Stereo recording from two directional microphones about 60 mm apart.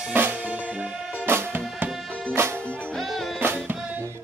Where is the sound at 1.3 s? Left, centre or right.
Right.